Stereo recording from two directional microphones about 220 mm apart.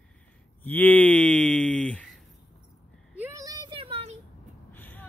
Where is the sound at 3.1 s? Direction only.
10° right (ahead or behind).